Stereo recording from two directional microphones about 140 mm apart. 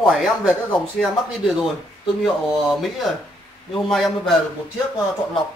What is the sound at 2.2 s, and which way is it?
Speech, centre (ahead or behind).